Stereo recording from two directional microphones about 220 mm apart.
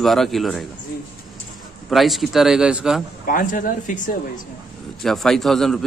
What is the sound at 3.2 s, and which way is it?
Speech, 40° left (ahead or behind).